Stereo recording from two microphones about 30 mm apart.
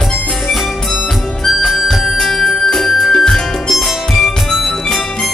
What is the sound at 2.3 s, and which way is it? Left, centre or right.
Music, centre.